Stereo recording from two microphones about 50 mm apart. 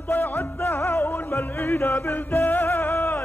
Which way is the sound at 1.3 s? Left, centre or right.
Left.